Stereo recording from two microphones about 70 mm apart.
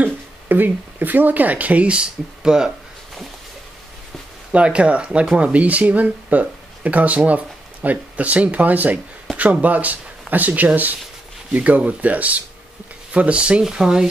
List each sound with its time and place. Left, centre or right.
0.0 s speech: right; by 2.7 s centre
4.5 s speech: centre